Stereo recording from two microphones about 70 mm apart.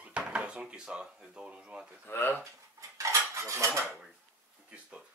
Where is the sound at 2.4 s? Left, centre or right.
Right.